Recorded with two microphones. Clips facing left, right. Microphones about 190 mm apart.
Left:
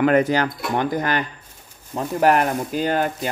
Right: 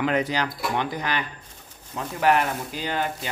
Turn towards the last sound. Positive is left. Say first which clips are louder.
# left 7 dB
turn(degrees=50)  # may be behind; listen again after turning